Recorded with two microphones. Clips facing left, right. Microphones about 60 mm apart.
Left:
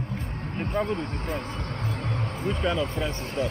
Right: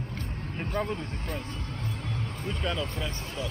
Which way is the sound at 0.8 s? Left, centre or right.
Left.